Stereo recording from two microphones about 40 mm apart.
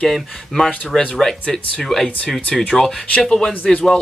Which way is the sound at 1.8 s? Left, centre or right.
Centre.